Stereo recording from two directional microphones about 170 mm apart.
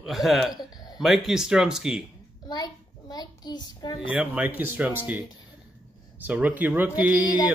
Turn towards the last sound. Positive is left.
turn(degrees=-10)  # may be behind; listen again after turning